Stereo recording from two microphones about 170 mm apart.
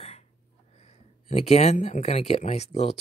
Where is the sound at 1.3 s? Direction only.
40° left (ahead or behind).